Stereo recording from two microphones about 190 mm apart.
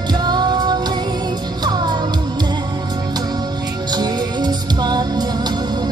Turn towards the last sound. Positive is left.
turn(degrees=-20)  # may be behind; listen again after turning